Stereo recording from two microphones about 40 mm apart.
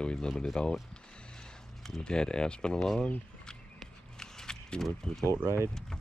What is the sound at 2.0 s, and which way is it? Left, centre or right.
Speech, left.